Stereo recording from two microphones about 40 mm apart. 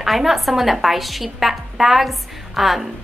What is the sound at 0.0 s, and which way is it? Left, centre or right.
A woman's voice, centre.